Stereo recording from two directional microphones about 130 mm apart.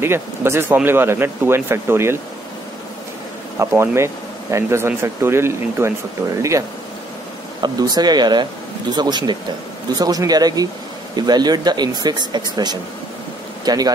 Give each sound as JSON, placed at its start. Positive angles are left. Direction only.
{"t": 0.0, "sound": "speech", "side_deg": -20}
{"t": 3.5, "sound": "speech", "side_deg": -20}
{"t": 7.6, "sound": "speech", "side_deg": -30}